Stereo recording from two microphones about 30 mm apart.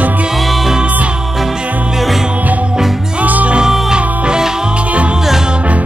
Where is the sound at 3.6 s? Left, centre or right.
Right.